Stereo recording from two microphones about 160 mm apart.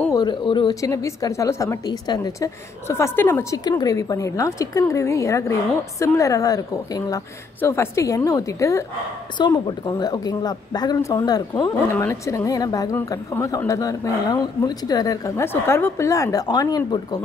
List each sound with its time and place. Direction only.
0.1 s speech: 30° left (ahead or behind)
0.7 s a woman's voice: 20° left (ahead or behind)